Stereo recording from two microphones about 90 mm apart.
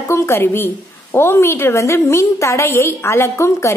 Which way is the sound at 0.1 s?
30° left (ahead or behind).